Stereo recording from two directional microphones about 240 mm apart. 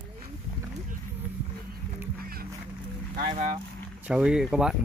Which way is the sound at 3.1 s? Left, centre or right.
Right.